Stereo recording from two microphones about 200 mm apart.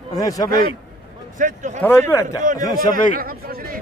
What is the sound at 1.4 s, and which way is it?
Speech, 40° right (ahead or behind).